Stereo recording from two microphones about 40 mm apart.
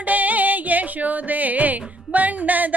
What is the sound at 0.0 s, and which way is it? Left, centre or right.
Music, right.